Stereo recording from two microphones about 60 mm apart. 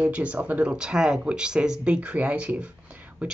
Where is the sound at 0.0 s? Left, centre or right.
Right.